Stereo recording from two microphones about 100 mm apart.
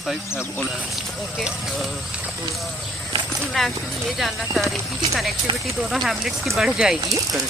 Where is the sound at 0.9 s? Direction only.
Centre (ahead or behind).